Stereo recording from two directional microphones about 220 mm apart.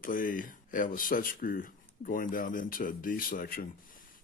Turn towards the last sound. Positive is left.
turn(degrees=40)  # may be behind; listen again after turning